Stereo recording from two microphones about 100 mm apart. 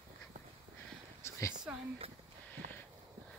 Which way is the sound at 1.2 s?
25° left (ahead or behind).